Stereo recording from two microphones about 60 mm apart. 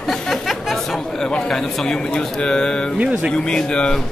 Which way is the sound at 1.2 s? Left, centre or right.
Centre.